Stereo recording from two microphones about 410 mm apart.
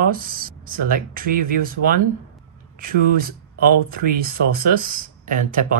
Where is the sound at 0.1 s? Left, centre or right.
Right.